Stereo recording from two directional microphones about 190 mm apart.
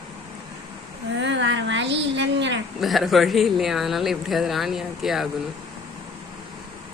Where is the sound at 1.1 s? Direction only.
70° right (ahead or behind).